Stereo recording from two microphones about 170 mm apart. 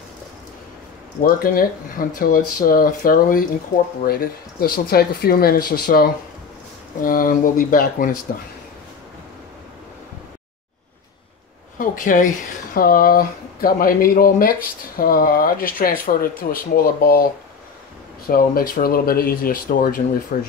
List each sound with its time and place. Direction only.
1.2 s speech: 60° left (ahead or behind)
7.0 s speech: 55° left (ahead or behind)
11.8 s speech: 55° left (ahead or behind)